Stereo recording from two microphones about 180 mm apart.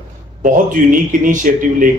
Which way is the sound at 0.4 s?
45° right (ahead or behind).